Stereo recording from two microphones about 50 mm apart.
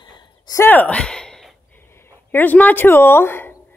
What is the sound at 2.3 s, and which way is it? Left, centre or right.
Speech, left.